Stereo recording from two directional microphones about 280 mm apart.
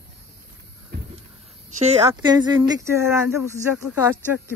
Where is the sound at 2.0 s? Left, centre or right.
Centre.